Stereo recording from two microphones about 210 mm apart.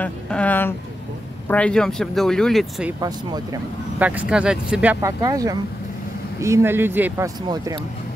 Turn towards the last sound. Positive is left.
turn(degrees=-15)  # may be behind; listen again after turning